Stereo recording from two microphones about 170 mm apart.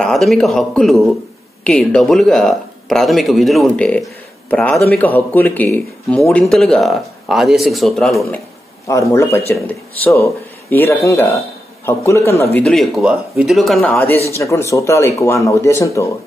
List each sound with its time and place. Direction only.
0.0 s speech: centre (ahead or behind)
8.8 s a man's voice: 15° left (ahead or behind)
12.5 s speech: 5° left (ahead or behind)
14.3 s speech: 15° left (ahead or behind)